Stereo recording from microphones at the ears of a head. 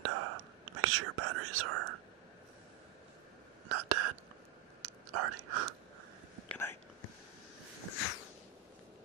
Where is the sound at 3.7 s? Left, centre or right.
Right.